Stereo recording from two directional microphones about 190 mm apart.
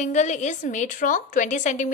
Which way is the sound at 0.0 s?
40° left (ahead or behind).